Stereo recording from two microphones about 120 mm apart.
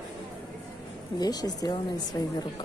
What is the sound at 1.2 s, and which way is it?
A woman's voice, 35° left (ahead or behind).